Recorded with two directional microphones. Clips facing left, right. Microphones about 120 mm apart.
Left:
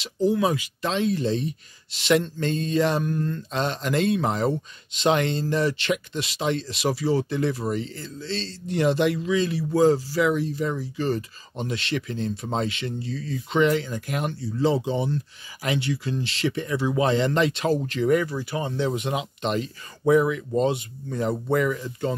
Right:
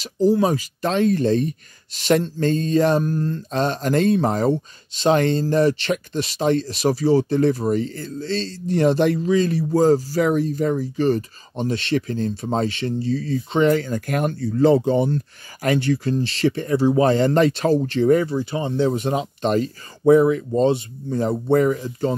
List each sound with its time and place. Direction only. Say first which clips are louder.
0.0 s speech: right 4 dB; 40° right (ahead or behind)